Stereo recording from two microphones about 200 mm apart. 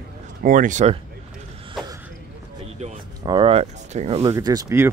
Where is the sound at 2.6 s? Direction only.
35° right (ahead or behind).